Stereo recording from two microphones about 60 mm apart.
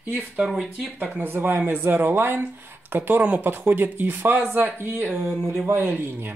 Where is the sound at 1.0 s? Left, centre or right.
Right.